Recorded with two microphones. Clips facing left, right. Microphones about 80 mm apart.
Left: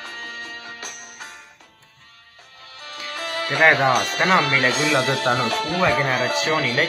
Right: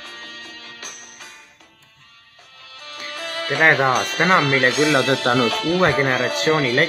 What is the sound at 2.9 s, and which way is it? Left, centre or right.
Music, left.